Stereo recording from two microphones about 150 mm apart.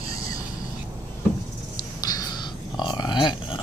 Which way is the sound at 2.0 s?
25° left (ahead or behind).